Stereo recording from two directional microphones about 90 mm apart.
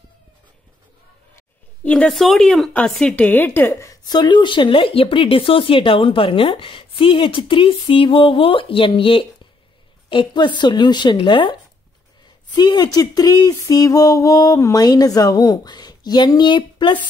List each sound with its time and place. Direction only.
2.0 s a woman's voice: centre (ahead or behind); by 3.7 s 20° left (ahead or behind)
3.8 s speech: 45° left (ahead or behind); by 9.5 s 75° left (ahead or behind)
10.0 s a woman's voice: 60° left (ahead or behind)
12.5 s a sound: 50° left (ahead or behind)